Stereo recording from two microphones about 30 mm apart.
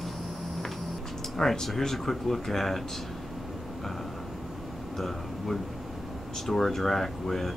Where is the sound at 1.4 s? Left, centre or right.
Centre.